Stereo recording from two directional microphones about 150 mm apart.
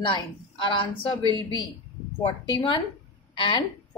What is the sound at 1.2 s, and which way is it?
Speech, 30° right (ahead or behind).